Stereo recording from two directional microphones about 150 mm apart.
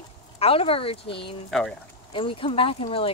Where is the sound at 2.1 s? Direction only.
35° left (ahead or behind).